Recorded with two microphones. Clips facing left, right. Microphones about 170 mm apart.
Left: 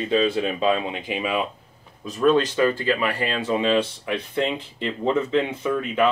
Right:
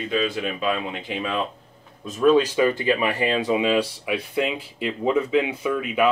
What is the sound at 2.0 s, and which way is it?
Speech, centre (ahead or behind).